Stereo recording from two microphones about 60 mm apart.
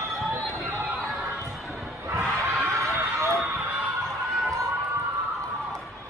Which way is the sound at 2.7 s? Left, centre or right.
Right.